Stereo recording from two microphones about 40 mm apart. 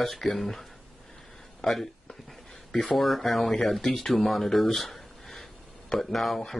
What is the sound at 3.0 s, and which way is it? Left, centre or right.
Speech, centre.